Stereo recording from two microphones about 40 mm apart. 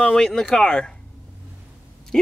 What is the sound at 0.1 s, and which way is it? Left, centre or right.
Speech, centre.